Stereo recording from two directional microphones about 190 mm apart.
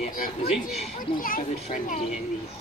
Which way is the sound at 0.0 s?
35° left (ahead or behind).